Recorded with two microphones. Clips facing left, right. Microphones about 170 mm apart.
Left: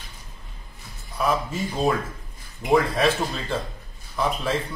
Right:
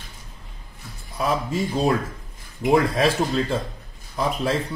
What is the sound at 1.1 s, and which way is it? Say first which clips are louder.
Speech: even; 35° right (ahead or behind).